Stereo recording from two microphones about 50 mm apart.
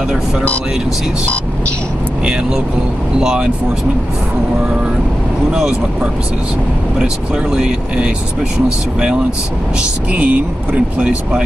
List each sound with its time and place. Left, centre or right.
3.2 s speech: centre
7.5 s speech: centre
10.1 s speech: right
11.0 s speech: centre